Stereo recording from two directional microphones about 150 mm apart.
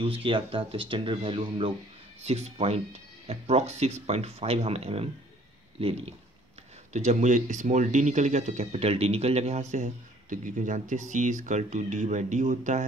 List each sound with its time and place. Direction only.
0.0 s speech: 40° right (ahead or behind)
6.9 s speech: 50° right (ahead or behind)